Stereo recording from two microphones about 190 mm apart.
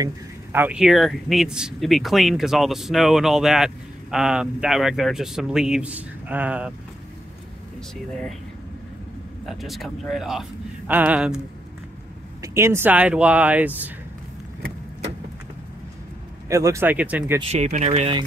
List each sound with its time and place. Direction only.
0.0 s speech: 10° right (ahead or behind)
9.5 s speech: centre (ahead or behind)
16.4 s speech: 15° right (ahead or behind)
17.4 s speech: 35° right (ahead or behind)